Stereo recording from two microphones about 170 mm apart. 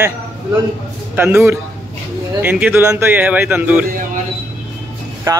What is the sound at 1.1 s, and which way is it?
Speech, 10° right (ahead or behind).